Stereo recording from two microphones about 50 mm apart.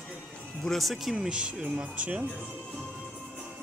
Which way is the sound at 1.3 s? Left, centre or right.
Centre.